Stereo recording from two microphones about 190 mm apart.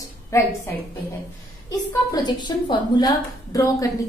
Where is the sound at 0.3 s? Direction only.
15° left (ahead or behind).